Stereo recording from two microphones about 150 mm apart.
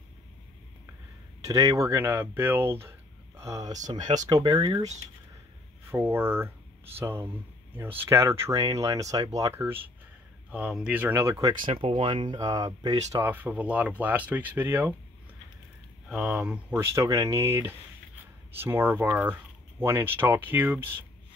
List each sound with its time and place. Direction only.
1.4 s speech: 25° right (ahead or behind)
5.9 s speech: 15° right (ahead or behind)
11.7 s speech: 35° right (ahead or behind); by 15.0 s 15° right (ahead or behind)
16.1 s speech: 5° right (ahead or behind)